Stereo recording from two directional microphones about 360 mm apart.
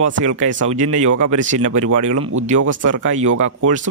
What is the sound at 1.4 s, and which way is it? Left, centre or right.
Speech, centre.